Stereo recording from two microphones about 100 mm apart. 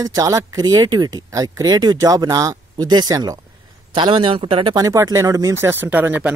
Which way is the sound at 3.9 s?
50° right (ahead or behind).